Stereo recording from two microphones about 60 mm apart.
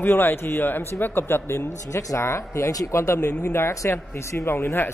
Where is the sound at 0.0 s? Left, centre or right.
Left.